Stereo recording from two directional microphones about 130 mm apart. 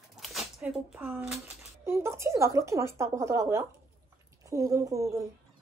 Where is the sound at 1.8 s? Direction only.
20° right (ahead or behind).